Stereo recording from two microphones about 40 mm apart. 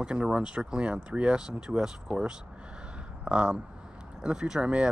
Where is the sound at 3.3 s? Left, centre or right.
Right.